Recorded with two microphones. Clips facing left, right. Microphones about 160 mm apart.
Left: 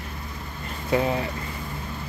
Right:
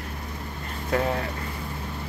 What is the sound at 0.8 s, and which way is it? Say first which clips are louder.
Speech: left 2 dB; 5° left (ahead or behind).